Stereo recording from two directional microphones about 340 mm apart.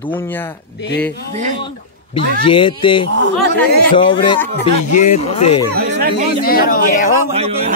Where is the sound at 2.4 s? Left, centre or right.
Centre.